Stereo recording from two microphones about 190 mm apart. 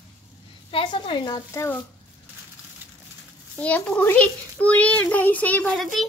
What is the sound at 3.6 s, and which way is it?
A child's voice, 5° left (ahead or behind).